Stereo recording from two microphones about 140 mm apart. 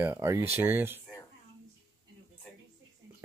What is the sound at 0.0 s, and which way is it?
Speech, 15° right (ahead or behind).